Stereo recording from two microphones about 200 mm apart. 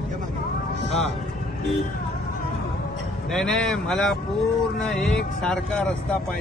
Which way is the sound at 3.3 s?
5° left (ahead or behind).